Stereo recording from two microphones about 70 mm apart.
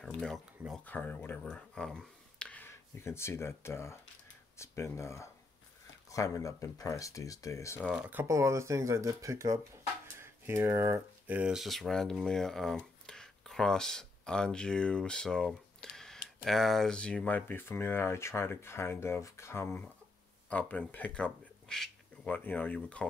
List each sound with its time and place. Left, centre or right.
0.0 s a sound: centre
0.8 s speech: left
1.4 s speech: centre
2.6 s speech: left
8.0 s speech: right
8.3 s speech: right
10.1 s a sound: right
11.2 s speech: right
11.5 s speech: centre
16.9 s speech: centre
17.5 s speech: left
20.4 s speech: left